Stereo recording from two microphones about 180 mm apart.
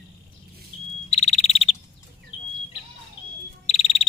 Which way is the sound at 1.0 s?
40° left (ahead or behind).